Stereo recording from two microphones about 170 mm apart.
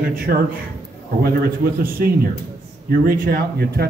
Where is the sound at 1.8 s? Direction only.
60° right (ahead or behind).